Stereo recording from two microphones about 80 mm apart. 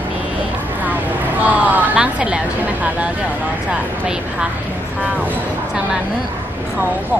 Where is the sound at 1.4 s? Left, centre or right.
Centre.